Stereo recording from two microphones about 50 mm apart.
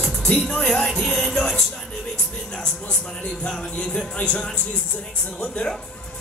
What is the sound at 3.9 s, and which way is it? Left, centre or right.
Speech, left.